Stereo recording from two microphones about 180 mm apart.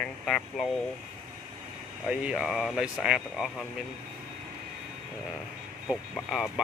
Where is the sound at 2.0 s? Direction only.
5° right (ahead or behind).